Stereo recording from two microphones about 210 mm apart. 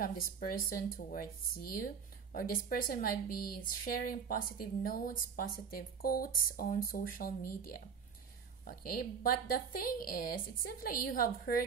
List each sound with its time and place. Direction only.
0.0 s a woman's voice: 45° left (ahead or behind)